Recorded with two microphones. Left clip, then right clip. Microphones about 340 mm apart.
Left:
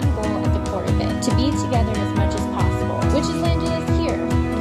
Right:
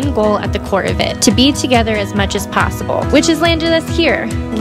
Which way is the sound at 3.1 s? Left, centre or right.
Right.